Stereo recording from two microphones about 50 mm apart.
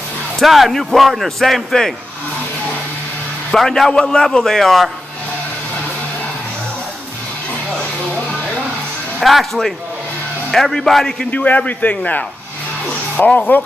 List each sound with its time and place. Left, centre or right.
0.4 s speech: centre
3.5 s a man's voice: centre
9.2 s a man's voice: centre
11.2 s a man's voice: left